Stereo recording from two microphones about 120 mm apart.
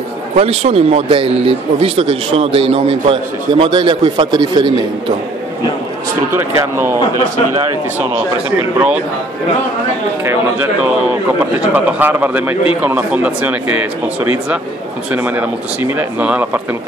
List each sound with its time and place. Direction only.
0.4 s speech: 55° right (ahead or behind); by 4.8 s 40° right (ahead or behind)
6.3 s speech: 20° right (ahead or behind)
10.2 s a man's voice: 15° right (ahead or behind)